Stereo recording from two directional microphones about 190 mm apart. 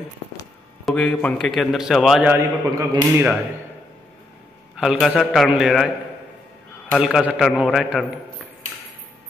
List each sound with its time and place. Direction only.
0.8 s a man's voice: 5° left (ahead or behind)
2.3 s a man's voice: 15° right (ahead or behind)
4.7 s a man's voice: centre (ahead or behind)
7.0 s a man's voice: 5° right (ahead or behind)